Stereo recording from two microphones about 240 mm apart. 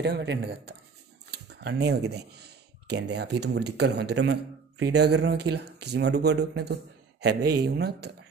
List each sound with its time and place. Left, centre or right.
0.0 s speech: right